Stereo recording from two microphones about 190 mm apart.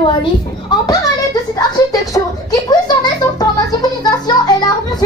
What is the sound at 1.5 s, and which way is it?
A child's voice, 20° left (ahead or behind).